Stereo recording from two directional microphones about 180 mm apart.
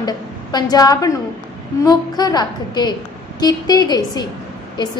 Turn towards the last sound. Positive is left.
turn(degrees=25)  # may be behind; listen again after turning